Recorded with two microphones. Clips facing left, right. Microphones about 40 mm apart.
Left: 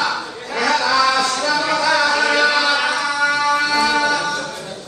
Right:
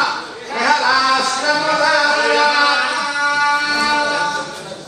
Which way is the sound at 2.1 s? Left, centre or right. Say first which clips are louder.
Right 2 dB; right.